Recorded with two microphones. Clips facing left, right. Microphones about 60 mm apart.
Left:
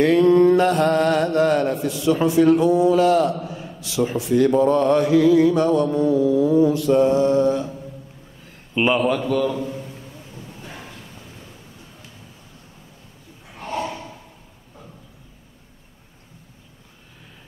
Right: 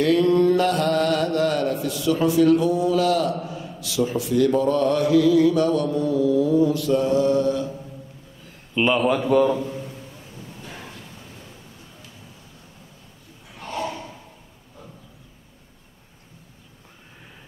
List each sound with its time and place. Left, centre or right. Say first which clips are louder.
0.0 s mantra: left 3 dB; left
3.4 s a man's voice: even; left
4.6 s mantra: left 3 dB; left
8.9 s a man's voice: even; centre
9.2 s a man's voice: right 3 dB; centre
13.6 s snort: left 2 dB; left